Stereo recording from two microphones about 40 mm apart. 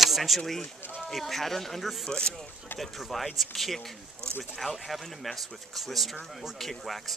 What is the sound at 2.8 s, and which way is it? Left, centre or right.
Speech, centre.